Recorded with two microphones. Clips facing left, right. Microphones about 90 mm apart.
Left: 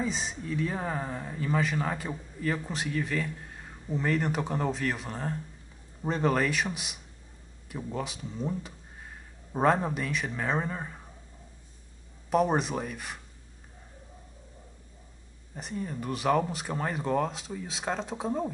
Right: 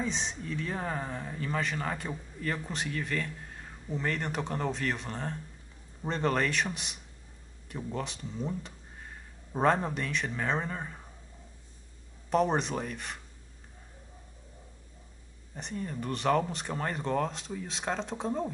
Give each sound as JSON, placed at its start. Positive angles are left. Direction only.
{"t": 0.0, "sound": "speech", "side_deg": 5}
{"t": 12.3, "sound": "speech", "side_deg": 5}
{"t": 15.5, "sound": "speech", "side_deg": 5}